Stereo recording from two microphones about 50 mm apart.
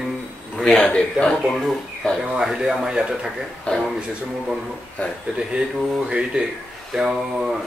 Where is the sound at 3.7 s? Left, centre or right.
Left.